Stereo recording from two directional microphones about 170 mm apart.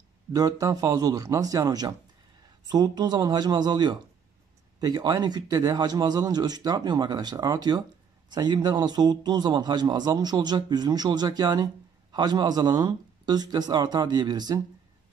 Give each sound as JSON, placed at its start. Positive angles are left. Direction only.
{"t": 0.3, "sound": "a man's voice", "side_deg": -20}